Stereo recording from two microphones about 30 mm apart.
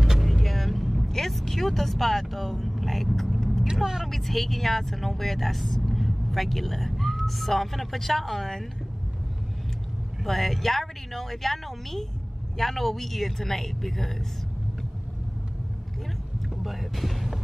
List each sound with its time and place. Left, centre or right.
0.2 s vehicle: centre
1.0 s vehicle: centre
1.3 s speech: centre
2.6 s vehicle: centre
3.8 s a woman's voice: centre
4.1 s speech: centre
10.2 s a woman's voice: centre
16.6 s a woman's voice: centre